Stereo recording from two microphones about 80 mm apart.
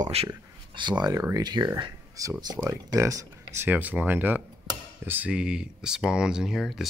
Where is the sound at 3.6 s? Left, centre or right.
Centre.